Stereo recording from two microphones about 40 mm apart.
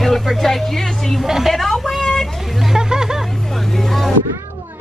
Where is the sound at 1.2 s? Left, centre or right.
Centre.